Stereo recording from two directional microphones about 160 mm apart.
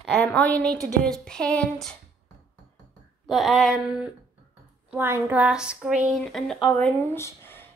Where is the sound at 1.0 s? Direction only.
5° left (ahead or behind).